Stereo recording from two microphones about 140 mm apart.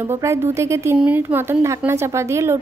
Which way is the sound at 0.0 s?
20° right (ahead or behind).